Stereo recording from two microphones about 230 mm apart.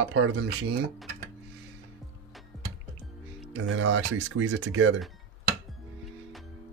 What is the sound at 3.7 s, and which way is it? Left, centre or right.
Speech, right.